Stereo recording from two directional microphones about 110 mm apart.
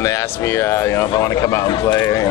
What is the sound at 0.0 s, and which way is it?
A man's voice, 25° left (ahead or behind).